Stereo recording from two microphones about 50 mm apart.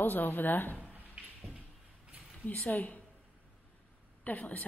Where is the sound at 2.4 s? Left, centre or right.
Left.